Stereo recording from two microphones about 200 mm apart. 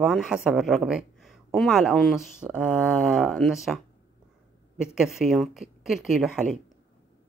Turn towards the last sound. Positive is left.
turn(degrees=-5)  # may be behind; listen again after turning